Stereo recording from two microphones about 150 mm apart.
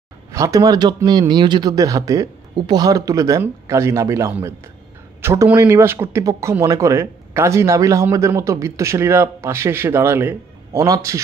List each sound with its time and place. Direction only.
0.3 s speech: 20° right (ahead or behind)